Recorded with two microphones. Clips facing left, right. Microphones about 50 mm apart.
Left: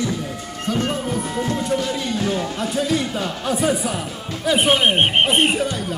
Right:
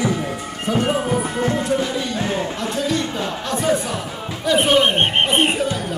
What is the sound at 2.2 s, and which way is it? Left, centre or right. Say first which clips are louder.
Neigh: left 1 dB; right.